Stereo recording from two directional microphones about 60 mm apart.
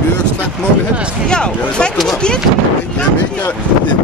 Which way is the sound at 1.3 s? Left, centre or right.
Centre.